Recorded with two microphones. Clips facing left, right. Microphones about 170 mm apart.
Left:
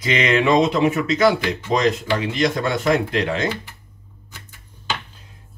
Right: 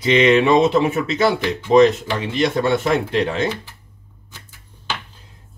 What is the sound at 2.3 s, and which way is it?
Speech, 30° right (ahead or behind).